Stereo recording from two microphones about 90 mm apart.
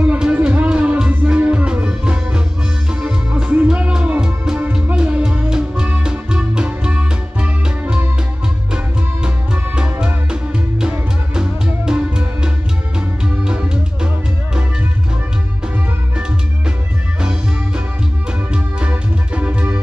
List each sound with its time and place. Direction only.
0.0 s music: 15° right (ahead or behind)
17.2 s music: 10° right (ahead or behind)